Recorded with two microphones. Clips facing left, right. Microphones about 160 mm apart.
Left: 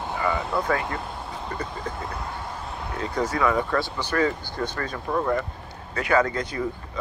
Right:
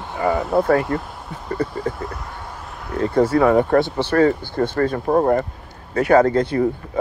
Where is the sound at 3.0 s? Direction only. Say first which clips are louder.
Right 10 dB; 55° right (ahead or behind).